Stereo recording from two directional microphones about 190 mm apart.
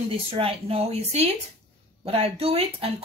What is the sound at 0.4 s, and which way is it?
A woman's voice, 30° right (ahead or behind).